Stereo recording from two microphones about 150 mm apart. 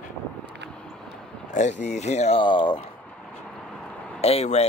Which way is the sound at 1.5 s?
50° left (ahead or behind).